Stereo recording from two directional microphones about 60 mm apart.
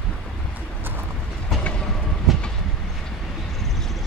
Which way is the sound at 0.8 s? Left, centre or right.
Right.